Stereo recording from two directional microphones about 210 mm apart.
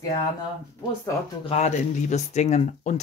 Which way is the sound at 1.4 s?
30° left (ahead or behind).